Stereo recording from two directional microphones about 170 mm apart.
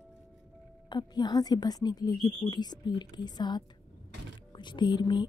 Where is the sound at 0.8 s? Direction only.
25° left (ahead or behind).